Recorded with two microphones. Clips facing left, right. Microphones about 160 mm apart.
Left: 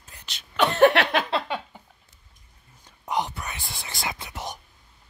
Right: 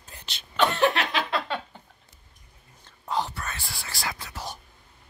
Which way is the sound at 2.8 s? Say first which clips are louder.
Left 1 dB; 20° left (ahead or behind).